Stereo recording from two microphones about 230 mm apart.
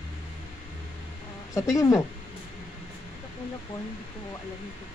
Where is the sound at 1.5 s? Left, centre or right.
Centre.